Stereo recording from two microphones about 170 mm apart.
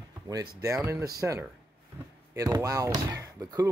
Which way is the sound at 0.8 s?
15° right (ahead or behind).